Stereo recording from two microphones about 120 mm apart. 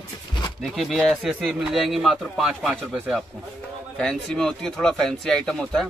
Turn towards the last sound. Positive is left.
turn(degrees=5)  # may be behind; listen again after turning